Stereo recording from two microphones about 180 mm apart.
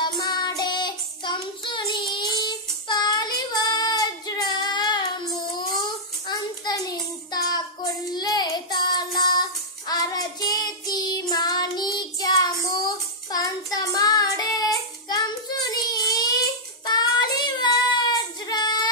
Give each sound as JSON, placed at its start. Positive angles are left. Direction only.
{"t": 0.0, "sound": "child singing", "side_deg": 25}